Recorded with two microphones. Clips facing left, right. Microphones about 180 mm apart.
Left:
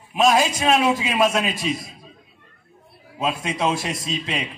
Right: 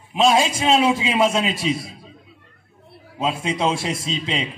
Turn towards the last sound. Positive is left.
turn(degrees=-25)  # may be behind; listen again after turning